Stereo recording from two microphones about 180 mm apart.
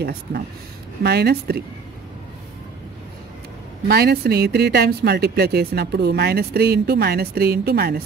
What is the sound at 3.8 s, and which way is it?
Speech, 60° right (ahead or behind).